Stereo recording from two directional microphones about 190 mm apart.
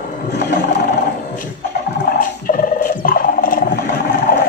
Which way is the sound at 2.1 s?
50° left (ahead or behind).